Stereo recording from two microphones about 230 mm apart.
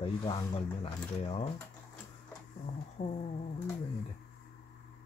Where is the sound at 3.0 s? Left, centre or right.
Left.